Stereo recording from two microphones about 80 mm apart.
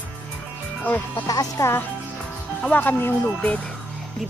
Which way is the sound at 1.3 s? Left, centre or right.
Left.